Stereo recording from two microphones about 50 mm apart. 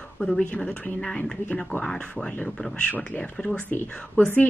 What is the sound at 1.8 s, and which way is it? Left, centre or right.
Speech, centre.